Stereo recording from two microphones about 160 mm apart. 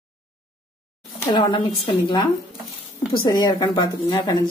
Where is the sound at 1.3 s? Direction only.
30° left (ahead or behind).